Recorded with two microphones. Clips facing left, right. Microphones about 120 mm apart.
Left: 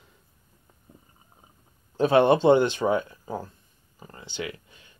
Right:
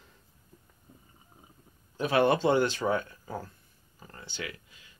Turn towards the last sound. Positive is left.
turn(degrees=30)  # may be behind; listen again after turning